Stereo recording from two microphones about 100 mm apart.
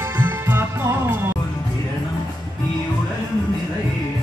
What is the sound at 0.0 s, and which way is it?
Music, 20° right (ahead or behind).